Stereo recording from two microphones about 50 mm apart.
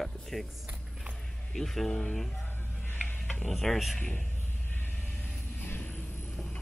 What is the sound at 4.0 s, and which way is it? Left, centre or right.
Speech, left.